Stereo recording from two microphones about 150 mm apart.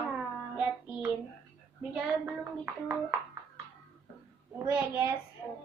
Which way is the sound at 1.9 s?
10° right (ahead or behind).